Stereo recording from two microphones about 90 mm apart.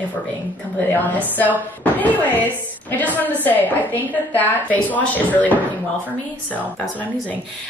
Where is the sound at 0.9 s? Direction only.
20° left (ahead or behind).